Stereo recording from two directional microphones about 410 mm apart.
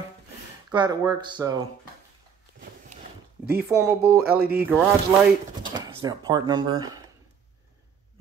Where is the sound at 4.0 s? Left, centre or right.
Right.